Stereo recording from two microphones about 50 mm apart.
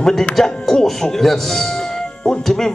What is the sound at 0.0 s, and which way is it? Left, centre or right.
Speech, centre.